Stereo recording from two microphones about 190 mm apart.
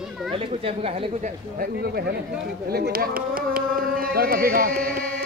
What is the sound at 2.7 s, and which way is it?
Speech, 55° right (ahead or behind).